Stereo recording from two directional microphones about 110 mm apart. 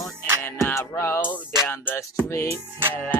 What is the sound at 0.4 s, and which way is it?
Music, 20° left (ahead or behind).